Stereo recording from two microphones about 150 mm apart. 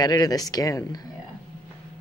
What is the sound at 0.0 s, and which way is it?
A woman's voice, 25° left (ahead or behind).